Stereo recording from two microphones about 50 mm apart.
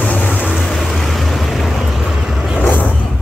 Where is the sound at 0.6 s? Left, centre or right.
Centre.